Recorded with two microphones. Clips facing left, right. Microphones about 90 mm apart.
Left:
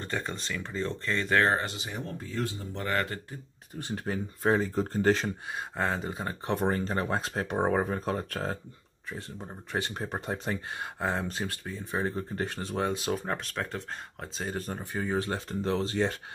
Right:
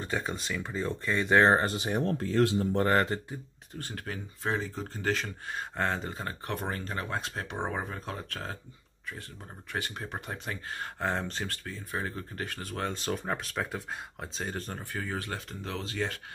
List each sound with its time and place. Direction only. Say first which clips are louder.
0.0 s speech: right 1 dB; 5° right (ahead or behind)
1.6 s speech: right 6 dB; 45° right (ahead or behind)
2.0 s speech: right 8 dB; 85° right
2.7 s speech: right 5 dB; 40° right (ahead or behind)
3.7 s speech: left 5 dB; 15° left (ahead or behind)
4.4 s speech: left 6 dB; 40° left (ahead or behind)
5.5 s speech: right 1 dB; 5° left (ahead or behind)
6.5 s speech: left 7 dB; 30° left (ahead or behind)
9.7 s speech: left 3 dB; 30° left (ahead or behind)
10.8 s speech: right 3 dB; 5° left (ahead or behind)
11.5 s speech: left 3 dB; 15° left (ahead or behind)
13.0 s speech: left 1 dB; centre (ahead or behind)
14.8 s speech: left 5 dB; 15° left (ahead or behind)